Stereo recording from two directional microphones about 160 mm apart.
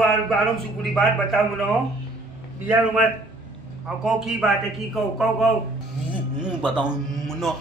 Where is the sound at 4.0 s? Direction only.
Centre (ahead or behind).